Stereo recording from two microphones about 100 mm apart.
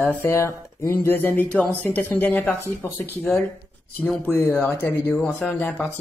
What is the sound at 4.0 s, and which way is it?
A man's voice, 15° left (ahead or behind).